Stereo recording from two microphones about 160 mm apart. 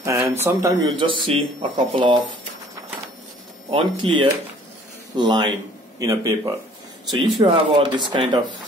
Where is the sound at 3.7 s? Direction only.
35° right (ahead or behind).